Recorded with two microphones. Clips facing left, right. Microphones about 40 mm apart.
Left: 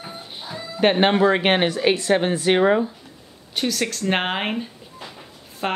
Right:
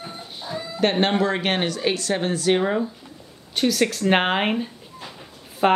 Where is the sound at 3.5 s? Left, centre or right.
Centre.